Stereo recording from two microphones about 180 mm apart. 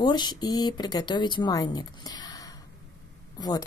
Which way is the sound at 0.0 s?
25° left (ahead or behind).